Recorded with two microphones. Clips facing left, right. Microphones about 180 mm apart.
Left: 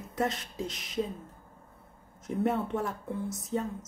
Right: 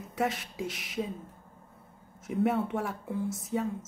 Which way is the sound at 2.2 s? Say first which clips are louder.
Right 1 dB; 10° right (ahead or behind).